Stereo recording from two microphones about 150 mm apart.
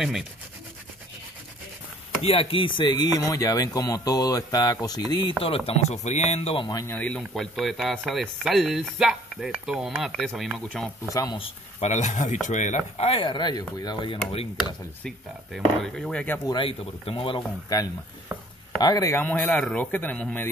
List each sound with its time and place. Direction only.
0.0 s speech: centre (ahead or behind)
2.2 s speech: 40° left (ahead or behind)
5.7 s speech: 45° left (ahead or behind)
6.7 s speech: 20° left (ahead or behind)
7.0 s speech: 5° left (ahead or behind)
11.1 s speech: 20° left (ahead or behind)
11.3 s speech: 40° left (ahead or behind)
14.3 s speech: 40° left (ahead or behind)
15.0 s speech: 5° left (ahead or behind)
16.4 s speech: 35° left (ahead or behind)
17.7 s speech: 25° left (ahead or behind); by 20.4 s 10° left (ahead or behind)